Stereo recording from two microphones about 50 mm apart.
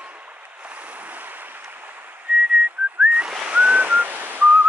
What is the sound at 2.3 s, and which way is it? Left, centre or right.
Whistling, centre.